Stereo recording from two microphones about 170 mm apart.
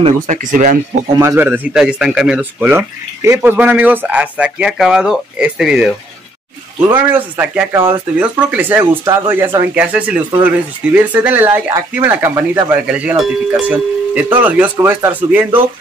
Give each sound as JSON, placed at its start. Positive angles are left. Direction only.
{"t": 0.0, "sound": "speech", "side_deg": -45}
{"t": 1.2, "sound": "speech", "side_deg": -15}